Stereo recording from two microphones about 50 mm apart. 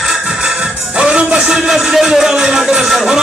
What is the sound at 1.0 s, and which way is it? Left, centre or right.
Music, right.